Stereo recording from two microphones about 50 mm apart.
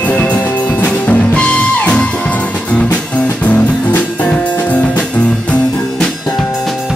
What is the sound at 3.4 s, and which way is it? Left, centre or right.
Music, left.